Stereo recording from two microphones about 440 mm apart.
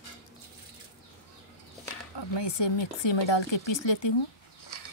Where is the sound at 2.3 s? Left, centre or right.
Left.